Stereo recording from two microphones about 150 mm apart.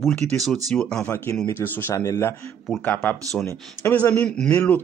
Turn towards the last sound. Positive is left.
turn(degrees=10)  # may be behind; listen again after turning